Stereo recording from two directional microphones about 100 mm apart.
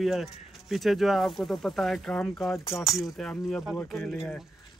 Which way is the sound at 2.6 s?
30° left (ahead or behind).